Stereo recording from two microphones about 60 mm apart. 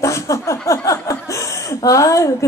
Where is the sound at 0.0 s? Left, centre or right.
Left.